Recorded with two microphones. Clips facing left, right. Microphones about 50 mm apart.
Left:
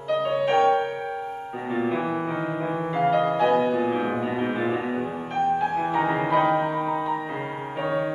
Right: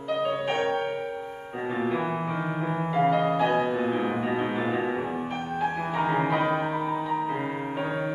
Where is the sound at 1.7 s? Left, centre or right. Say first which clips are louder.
Left 3 dB; centre.